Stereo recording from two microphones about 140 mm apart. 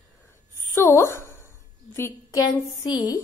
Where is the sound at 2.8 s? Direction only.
30° left (ahead or behind).